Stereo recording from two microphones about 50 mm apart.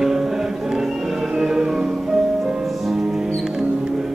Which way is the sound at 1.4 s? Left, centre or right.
Centre.